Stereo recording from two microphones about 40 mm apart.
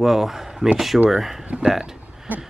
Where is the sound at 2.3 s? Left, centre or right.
Right.